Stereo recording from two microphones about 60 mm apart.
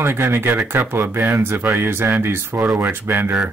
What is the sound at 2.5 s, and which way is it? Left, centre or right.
Speech, centre.